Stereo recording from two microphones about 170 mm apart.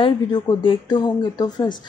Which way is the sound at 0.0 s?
30° left (ahead or behind).